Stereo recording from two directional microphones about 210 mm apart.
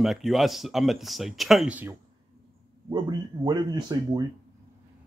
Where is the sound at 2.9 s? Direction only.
20° right (ahead or behind).